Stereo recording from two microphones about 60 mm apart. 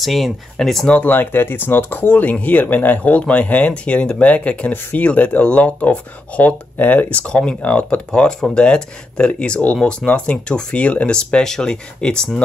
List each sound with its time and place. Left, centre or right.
0.0 s speech: centre
1.0 s speech: left; by 12.4 s centre